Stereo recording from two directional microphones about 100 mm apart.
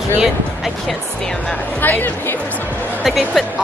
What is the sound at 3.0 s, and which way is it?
Speech, centre (ahead or behind).